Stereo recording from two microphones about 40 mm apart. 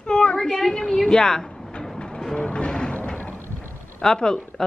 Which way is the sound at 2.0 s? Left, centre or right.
Centre.